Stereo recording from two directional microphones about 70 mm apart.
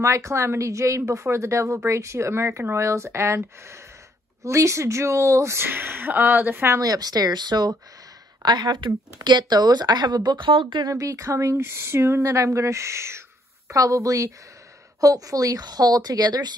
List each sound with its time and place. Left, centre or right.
0.0 s a woman's voice: right
5.7 s speech: right
6.8 s speech: right
11.0 s a woman's voice: right